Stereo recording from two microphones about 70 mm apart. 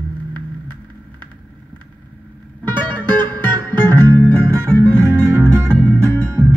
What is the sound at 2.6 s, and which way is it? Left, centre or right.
Music, right.